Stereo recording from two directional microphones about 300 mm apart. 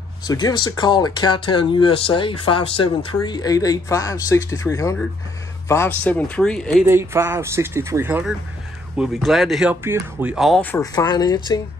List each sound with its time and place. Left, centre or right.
0.3 s speech: centre
6.9 s speech: centre